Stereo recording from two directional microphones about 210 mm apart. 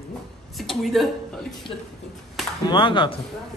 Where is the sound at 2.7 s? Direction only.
20° left (ahead or behind).